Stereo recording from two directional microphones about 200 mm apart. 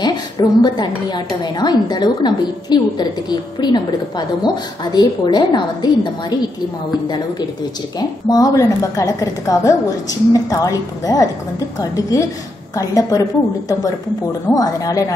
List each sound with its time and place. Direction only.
0.0 s a woman's voice: 20° left (ahead or behind)
8.0 s a woman's voice: 20° left (ahead or behind)